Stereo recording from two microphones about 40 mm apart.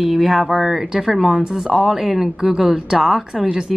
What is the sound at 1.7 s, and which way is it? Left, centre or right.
Speech, centre.